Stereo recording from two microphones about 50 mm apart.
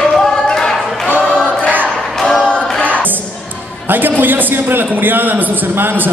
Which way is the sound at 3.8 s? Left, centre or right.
Right.